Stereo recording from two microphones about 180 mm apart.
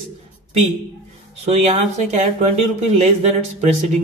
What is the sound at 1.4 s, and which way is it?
A man's voice, 35° right (ahead or behind).